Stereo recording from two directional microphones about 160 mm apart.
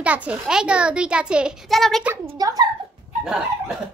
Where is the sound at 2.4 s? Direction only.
25° right (ahead or behind).